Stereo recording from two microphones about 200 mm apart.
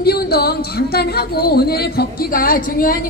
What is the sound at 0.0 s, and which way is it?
A woman's voice, 50° left (ahead or behind).